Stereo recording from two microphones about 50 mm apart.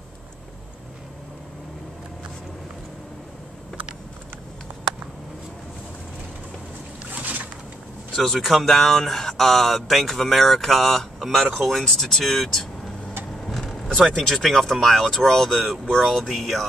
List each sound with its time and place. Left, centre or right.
7.1 s boat: right
8.1 s speech: centre
13.4 s vehicle: centre
14.0 s speech: centre